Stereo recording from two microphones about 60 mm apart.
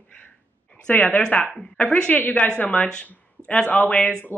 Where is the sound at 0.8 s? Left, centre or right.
Left.